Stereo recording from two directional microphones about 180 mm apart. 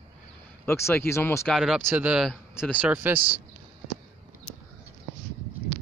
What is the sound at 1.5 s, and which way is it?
Speech, centre (ahead or behind).